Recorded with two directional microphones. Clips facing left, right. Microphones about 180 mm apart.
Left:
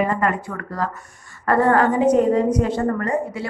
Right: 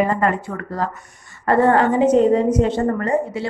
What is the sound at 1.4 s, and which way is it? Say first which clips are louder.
A woman's voice: right 2 dB; 25° right (ahead or behind).